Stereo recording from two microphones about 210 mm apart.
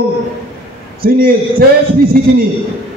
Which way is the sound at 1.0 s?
45° right (ahead or behind).